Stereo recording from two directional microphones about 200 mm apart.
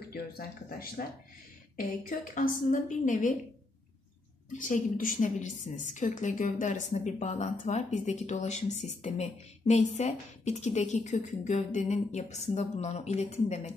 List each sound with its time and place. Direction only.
0.1 s speech: 50° left (ahead or behind)
4.5 s speech: 40° left (ahead or behind)